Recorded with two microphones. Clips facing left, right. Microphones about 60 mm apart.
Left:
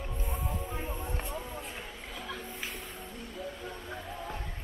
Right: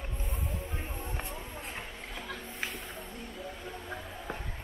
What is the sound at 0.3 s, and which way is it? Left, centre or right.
Music, centre.